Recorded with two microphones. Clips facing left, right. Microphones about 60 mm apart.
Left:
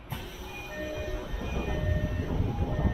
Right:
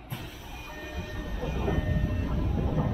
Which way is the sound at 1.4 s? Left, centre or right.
Right.